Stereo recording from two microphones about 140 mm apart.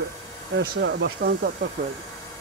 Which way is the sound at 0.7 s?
90° right.